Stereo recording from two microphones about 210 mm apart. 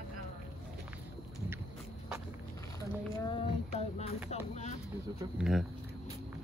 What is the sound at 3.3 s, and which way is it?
Music, 30° left (ahead or behind).